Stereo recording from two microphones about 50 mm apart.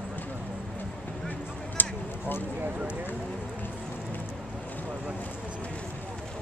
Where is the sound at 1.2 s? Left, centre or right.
Left.